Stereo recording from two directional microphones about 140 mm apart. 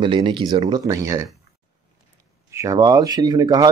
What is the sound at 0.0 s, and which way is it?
Speech, 35° right (ahead or behind).